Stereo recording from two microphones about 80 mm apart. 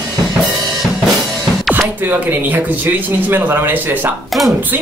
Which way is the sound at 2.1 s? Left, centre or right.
Right.